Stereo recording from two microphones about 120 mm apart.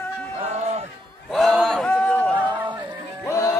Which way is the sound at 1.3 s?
Centre (ahead or behind).